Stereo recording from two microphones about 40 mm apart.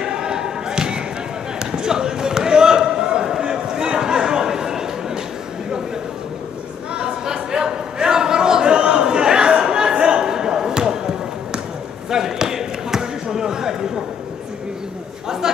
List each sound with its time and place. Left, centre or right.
0.0 s basketball bounce: centre
6.9 s a sound: centre
12.1 s basketball bounce: centre
15.4 s chatter: centre